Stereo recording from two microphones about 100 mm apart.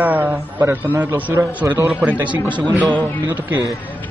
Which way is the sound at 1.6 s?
30° right (ahead or behind).